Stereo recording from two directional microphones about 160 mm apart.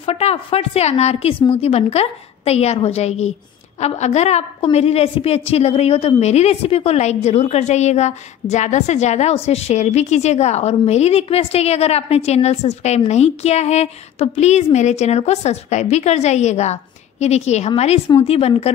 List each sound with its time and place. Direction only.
0.0 s a woman's voice: 40° left (ahead or behind)